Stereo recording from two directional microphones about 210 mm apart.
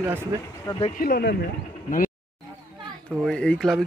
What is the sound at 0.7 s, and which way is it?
Speech, 15° left (ahead or behind).